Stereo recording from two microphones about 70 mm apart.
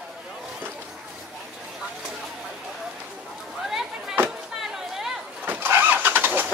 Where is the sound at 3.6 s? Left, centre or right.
Centre.